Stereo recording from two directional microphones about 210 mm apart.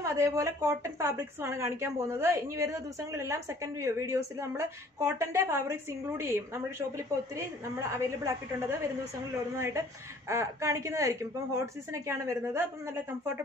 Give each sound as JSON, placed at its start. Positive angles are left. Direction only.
{"t": 0.0, "sound": "a woman's voice", "side_deg": -15}
{"t": 7.9, "sound": "a woman's voice", "side_deg": -15}